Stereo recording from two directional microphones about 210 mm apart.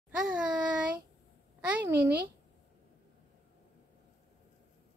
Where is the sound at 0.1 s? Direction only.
5° right (ahead or behind).